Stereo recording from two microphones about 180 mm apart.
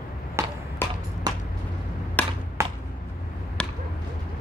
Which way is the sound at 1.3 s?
20° right (ahead or behind).